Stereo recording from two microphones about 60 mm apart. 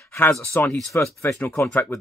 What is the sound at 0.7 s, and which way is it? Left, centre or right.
Speech, centre.